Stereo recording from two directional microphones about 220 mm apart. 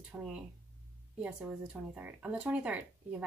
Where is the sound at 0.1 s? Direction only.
10° right (ahead or behind).